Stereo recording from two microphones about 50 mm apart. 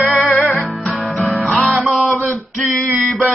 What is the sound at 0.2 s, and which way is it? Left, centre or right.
Music, left.